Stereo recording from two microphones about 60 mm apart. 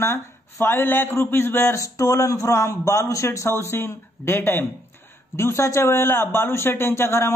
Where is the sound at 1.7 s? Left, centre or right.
Left.